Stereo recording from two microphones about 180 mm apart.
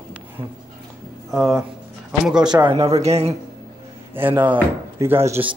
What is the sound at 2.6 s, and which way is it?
Speech, 30° right (ahead or behind).